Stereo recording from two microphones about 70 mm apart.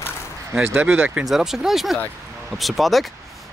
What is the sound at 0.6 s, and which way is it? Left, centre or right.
Speech, centre.